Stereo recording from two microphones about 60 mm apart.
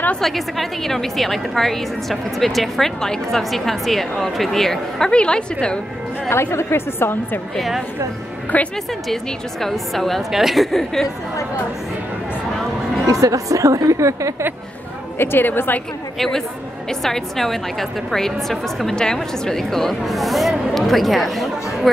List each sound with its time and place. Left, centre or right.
0.2 s a woman's voice: centre
6.2 s a woman's voice: left
7.5 s a woman's voice: centre
8.5 s a woman's voice: left
9.1 s a woman's voice: centre
13.1 s a woman's voice: right
15.1 s a woman's voice: left
16.2 s a woman's voice: centre